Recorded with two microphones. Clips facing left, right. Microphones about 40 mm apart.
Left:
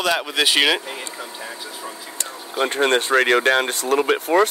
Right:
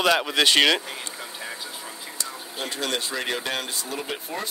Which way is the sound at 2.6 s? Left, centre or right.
Left.